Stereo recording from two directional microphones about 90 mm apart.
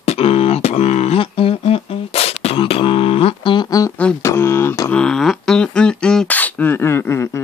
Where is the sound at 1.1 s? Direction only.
90° left.